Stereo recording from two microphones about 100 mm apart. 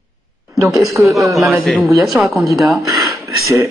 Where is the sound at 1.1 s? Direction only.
Centre (ahead or behind).